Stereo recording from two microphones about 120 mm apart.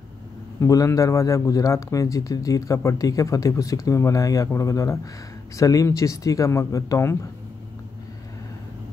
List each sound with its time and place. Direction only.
0.6 s a man's voice: 25° left (ahead or behind)